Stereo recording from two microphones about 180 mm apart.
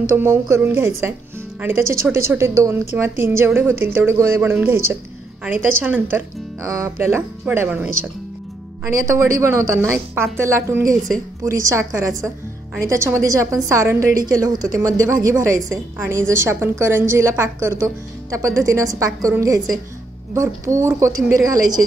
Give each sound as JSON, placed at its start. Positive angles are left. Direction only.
{"t": 0.0, "sound": "a woman's voice", "side_deg": -15}
{"t": 20.8, "sound": "a woman's voice", "side_deg": -15}